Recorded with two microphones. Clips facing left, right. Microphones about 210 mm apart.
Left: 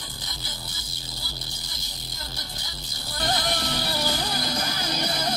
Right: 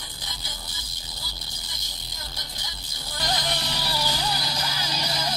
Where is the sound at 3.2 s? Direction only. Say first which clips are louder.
Left 2 dB; 55° left (ahead or behind).